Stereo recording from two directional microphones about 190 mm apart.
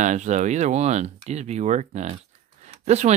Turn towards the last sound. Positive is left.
turn(degrees=-35)  # may be behind; listen again after turning